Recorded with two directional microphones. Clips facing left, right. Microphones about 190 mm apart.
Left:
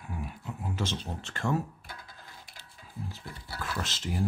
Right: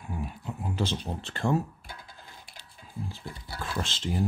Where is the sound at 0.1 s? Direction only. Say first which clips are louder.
Right 3 dB; 30° right (ahead or behind).